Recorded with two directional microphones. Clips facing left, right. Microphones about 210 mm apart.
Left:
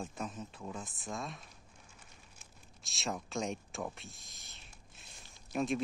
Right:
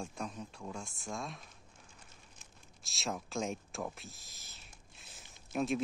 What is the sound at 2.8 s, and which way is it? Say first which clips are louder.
Speech: even; centre (ahead or behind).